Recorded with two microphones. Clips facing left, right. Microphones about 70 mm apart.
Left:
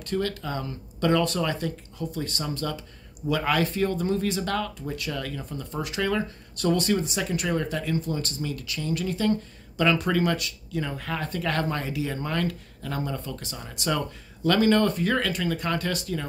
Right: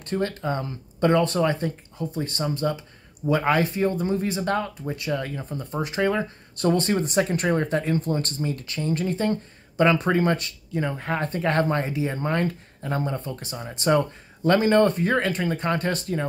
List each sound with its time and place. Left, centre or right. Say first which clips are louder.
0.0 s speech: right 2 dB; right